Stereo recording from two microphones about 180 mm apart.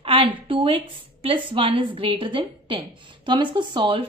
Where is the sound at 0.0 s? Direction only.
30° right (ahead or behind).